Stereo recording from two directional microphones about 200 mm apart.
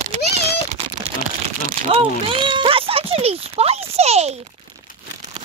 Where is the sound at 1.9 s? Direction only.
25° right (ahead or behind).